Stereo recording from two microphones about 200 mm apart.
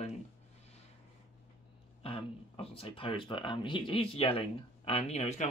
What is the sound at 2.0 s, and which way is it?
Speech, 30° left (ahead or behind).